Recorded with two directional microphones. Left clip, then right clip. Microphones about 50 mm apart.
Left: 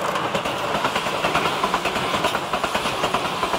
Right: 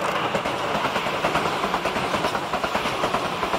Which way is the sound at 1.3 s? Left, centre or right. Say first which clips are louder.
Left 2 dB; left.